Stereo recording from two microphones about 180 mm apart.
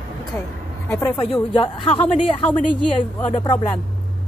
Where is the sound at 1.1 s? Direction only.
30° left (ahead or behind).